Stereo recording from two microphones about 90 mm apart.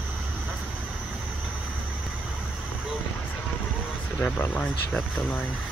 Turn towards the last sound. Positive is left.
turn(degrees=15)  # may be behind; listen again after turning